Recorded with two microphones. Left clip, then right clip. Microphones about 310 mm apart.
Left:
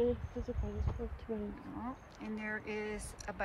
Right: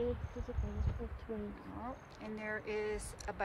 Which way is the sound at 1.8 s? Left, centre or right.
Centre.